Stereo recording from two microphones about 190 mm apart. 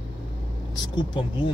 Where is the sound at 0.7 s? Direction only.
25° left (ahead or behind).